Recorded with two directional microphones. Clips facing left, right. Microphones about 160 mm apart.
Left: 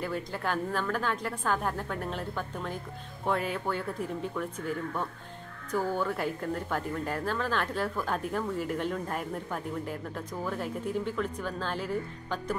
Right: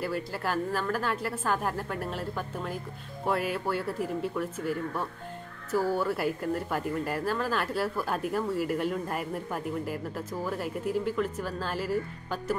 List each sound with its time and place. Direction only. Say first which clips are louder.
0.0 s a woman's voice: right 1 dB; 5° right (ahead or behind)